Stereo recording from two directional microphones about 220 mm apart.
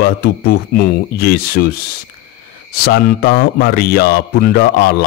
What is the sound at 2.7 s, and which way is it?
A man's voice, 45° left (ahead or behind).